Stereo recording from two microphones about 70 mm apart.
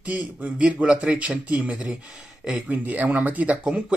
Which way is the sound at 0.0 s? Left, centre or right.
Centre.